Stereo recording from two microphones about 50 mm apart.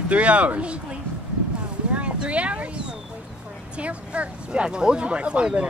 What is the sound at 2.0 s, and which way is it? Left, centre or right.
Speech, right.